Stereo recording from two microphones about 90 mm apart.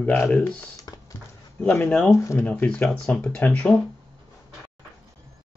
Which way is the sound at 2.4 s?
20° left (ahead or behind).